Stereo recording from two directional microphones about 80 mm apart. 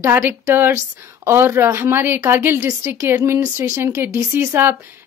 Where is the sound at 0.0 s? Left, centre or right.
Right.